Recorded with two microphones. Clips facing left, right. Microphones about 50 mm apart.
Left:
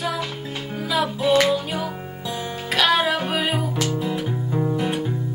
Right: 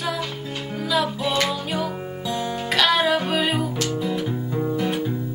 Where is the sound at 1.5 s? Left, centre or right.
Centre.